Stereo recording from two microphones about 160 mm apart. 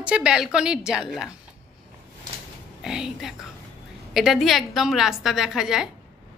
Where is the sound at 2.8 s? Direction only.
5° right (ahead or behind).